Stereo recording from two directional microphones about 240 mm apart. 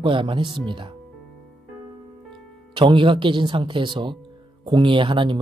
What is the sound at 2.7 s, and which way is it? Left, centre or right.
Speech, centre.